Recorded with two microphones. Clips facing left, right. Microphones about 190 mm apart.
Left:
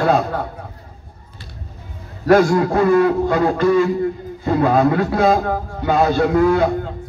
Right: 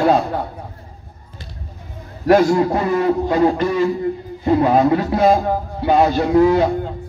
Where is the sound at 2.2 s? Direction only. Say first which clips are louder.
Even; 20° right (ahead or behind).